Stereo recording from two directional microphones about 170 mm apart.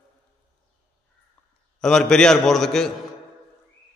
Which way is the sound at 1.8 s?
5° left (ahead or behind).